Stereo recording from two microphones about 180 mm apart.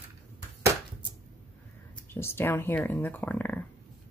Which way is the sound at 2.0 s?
15° left (ahead or behind).